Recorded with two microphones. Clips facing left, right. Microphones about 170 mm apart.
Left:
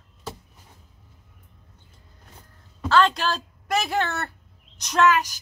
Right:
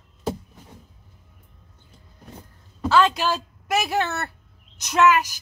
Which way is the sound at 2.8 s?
10° right (ahead or behind).